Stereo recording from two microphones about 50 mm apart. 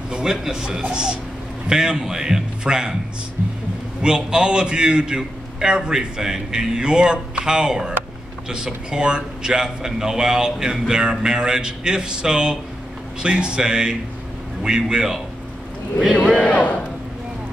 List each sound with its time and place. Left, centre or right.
0.1 s a man's voice: centre
4.0 s a man's voice: centre
16.4 s a man's voice: left